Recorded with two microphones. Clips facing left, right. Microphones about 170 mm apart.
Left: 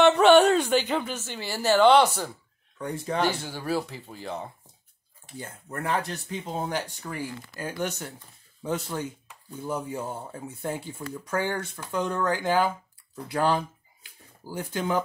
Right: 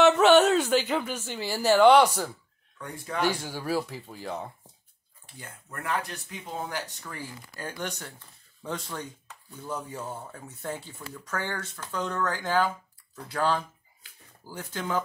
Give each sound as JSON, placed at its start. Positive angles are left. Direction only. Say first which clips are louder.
{"t": 0.0, "sound": "a woman's voice", "louder": "left 2 dB", "side_deg": -5}
{"t": 2.0, "sound": "speech", "louder": "even", "side_deg": 10}
{"t": 2.8, "sound": "speech", "louder": "left 4 dB", "side_deg": 30}
{"t": 3.3, "sound": "speech", "louder": "even", "side_deg": -10}
{"t": 5.4, "sound": "speech", "louder": "left 6 dB", "side_deg": 30}
{"t": 7.1, "sound": "speech", "louder": "left 6 dB", "side_deg": 10}
{"t": 8.9, "sound": "speech", "louder": "left 5 dB", "side_deg": 25}
{"t": 10.7, "sound": "speech", "louder": "left 3 dB", "side_deg": 15}